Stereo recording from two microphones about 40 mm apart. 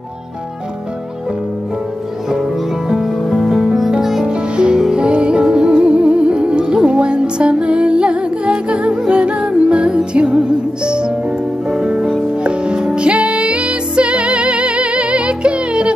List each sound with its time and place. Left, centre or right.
2.2 s music: centre
4.3 s music: right